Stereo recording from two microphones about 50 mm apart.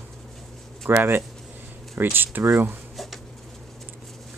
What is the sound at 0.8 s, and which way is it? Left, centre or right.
Speech, right.